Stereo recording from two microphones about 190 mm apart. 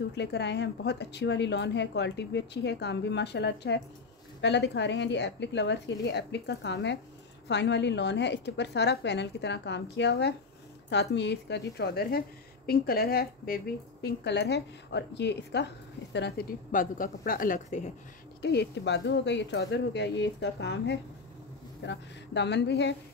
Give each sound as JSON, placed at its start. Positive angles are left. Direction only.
{"t": 0.1, "sound": "a woman's voice", "side_deg": 65}
{"t": 16.7, "sound": "a woman's voice", "side_deg": 45}
{"t": 18.4, "sound": "speech", "side_deg": 65}